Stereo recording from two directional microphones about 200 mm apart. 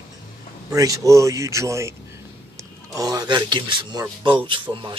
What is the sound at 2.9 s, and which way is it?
Speech, 20° right (ahead or behind).